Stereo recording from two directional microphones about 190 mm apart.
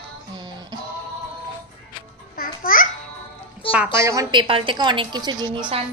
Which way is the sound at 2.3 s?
50° left (ahead or behind).